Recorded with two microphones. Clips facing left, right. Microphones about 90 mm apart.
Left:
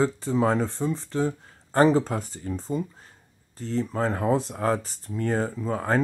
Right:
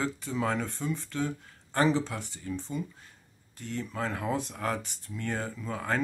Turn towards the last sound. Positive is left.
turn(degrees=35)  # may be behind; listen again after turning